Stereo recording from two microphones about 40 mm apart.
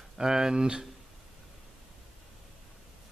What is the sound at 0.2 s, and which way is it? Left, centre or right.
Speech, centre.